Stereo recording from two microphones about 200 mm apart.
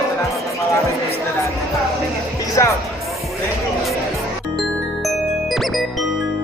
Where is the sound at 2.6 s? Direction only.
15° left (ahead or behind).